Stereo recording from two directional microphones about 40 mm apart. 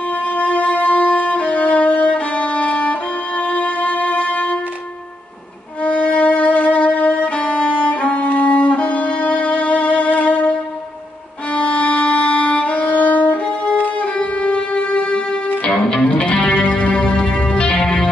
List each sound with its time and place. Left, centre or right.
0.3 s violin: left
5.9 s music: left
7.9 s violin: left
8.3 s music: left
11.5 s music: left
12.9 s music: left
13.7 s music: left